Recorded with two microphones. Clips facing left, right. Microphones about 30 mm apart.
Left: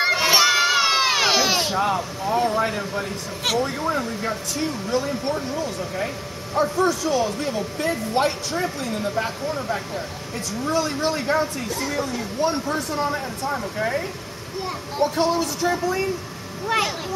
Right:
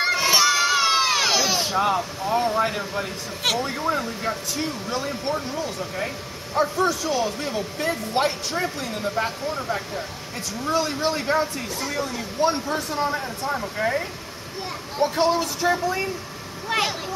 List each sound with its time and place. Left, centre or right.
0.0 s crowd: centre
1.8 s speech: centre